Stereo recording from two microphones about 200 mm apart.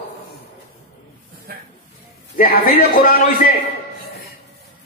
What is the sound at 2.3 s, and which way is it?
A man's voice, 45° left (ahead or behind).